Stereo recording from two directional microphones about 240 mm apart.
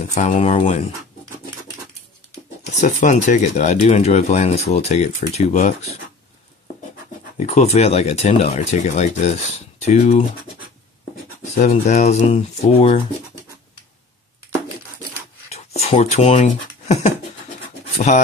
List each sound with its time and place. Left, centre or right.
0.1 s speech: left
2.7 s speech: left
7.3 s speech: left
11.5 s speech: left
15.5 s speech: left